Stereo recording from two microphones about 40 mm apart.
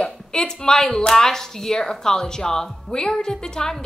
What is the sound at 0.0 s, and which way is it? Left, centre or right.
A woman's voice, centre.